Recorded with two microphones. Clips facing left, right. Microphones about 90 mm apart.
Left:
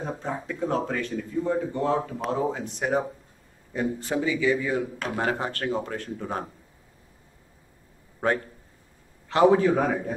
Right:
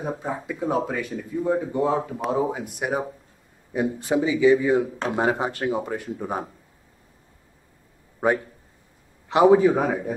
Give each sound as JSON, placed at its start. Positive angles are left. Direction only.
{"t": 0.0, "sound": "speech", "side_deg": -10}
{"t": 8.2, "sound": "speech", "side_deg": -15}